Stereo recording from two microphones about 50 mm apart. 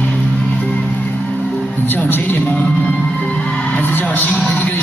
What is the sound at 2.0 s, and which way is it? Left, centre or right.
Speech, left.